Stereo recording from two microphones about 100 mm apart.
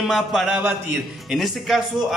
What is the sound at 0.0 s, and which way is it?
A man's voice, 5° right (ahead or behind).